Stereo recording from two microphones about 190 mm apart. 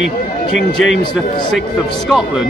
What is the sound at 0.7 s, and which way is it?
Speech, centre (ahead or behind).